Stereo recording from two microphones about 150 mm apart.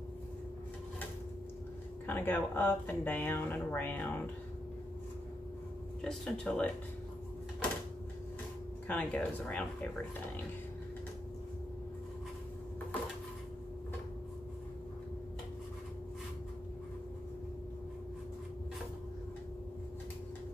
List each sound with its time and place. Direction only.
2.0 s speech: 15° left (ahead or behind)
6.0 s speech: 5° left (ahead or behind)
8.8 s speech: 10° left (ahead or behind)